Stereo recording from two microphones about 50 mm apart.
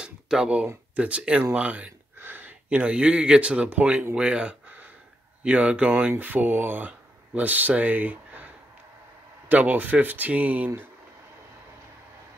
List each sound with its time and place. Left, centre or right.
0.0 s a sound: centre
0.9 s speech: right
2.2 s a sound: right
2.7 s speech: right
6.1 s speech: right
9.5 s speech: right